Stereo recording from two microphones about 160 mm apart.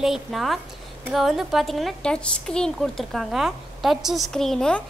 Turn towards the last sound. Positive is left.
turn(degrees=5)  # may be behind; listen again after turning